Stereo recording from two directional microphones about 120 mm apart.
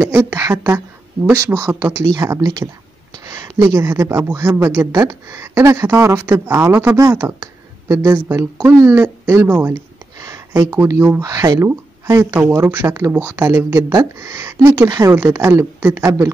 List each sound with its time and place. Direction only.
0.0 s a woman's voice: 20° right (ahead or behind)